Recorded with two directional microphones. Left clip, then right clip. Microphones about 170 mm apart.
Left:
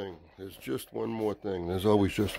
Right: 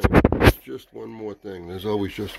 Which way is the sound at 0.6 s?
25° left (ahead or behind).